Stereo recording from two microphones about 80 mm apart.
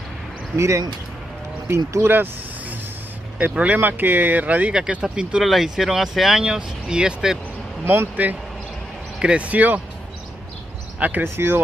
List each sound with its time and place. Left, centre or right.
0.6 s speech: right
3.3 s speech: centre
7.8 s speech: right
11.0 s speech: right
11.2 s speech: right